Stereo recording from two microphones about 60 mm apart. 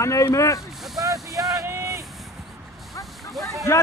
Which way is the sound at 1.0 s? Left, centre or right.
Right.